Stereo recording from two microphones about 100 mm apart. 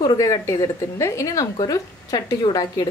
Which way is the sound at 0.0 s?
40° left (ahead or behind).